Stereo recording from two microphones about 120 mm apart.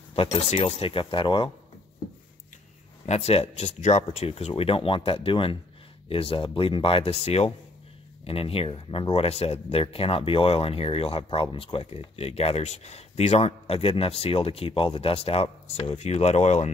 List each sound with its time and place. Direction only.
0.1 s speech: 55° left (ahead or behind)
3.1 s speech: 60° left (ahead or behind)